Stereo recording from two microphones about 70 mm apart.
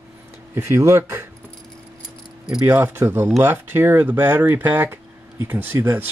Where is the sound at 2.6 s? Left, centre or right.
Right.